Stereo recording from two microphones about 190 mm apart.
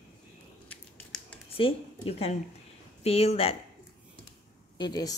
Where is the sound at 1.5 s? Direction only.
30° left (ahead or behind).